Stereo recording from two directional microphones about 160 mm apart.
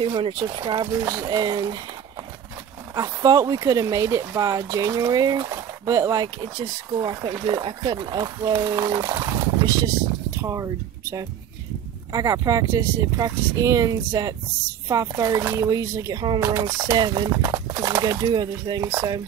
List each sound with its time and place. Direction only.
0.0 s speech: 30° right (ahead or behind)
2.9 s speech: 25° right (ahead or behind)